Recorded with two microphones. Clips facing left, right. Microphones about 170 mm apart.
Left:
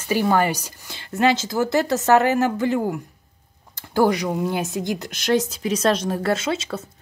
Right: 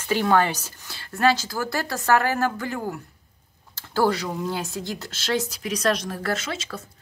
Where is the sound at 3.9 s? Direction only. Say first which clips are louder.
Left 4 dB; 15° left (ahead or behind).